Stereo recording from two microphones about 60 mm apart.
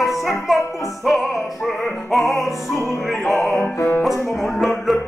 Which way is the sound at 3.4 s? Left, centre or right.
Left.